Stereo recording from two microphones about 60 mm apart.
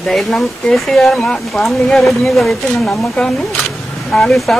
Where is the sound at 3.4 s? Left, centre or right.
Centre.